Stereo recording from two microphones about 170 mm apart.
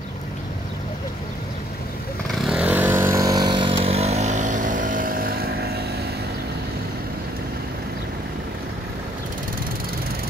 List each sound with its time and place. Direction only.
2.4 s vehicle: 5° right (ahead or behind); by 5.8 s 65° right (ahead or behind)